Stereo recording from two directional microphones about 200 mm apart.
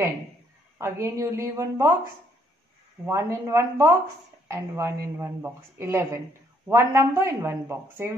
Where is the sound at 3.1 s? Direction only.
15° right (ahead or behind).